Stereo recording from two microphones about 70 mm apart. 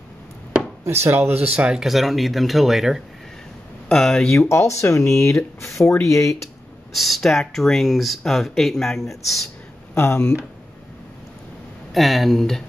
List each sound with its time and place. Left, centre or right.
0.8 s speech: right
1.5 s speech: centre
1.9 s speech: centre
4.3 s speech: left
6.9 s speech: centre
9.9 s speech: left
11.9 s speech: centre